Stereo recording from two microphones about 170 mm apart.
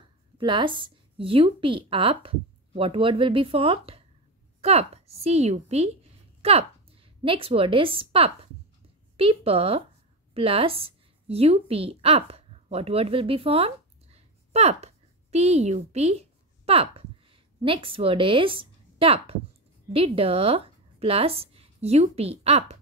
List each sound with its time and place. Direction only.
0.4 s a woman's voice: 30° right (ahead or behind)